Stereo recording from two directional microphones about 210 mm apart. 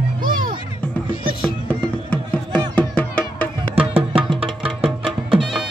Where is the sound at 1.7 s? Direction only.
5° left (ahead or behind).